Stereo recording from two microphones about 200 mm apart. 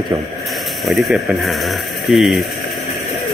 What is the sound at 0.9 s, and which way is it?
Speech, centre (ahead or behind).